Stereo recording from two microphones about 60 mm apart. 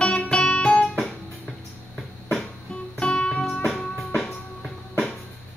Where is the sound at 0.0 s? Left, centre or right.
Centre.